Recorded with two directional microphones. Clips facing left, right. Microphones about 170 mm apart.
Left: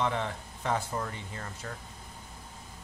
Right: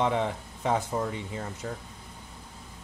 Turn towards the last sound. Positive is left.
turn(degrees=-15)  # may be behind; listen again after turning